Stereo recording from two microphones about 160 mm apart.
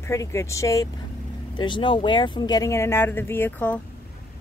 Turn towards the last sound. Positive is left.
turn(degrees=10)  # may be behind; listen again after turning